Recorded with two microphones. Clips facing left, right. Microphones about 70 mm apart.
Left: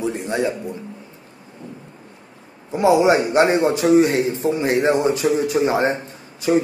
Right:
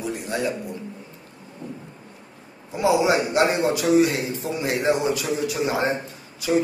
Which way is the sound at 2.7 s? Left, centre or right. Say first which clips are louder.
Left 5 dB; left.